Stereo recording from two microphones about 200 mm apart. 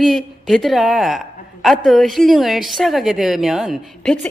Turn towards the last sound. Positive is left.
turn(degrees=0)  # may be behind; listen again after turning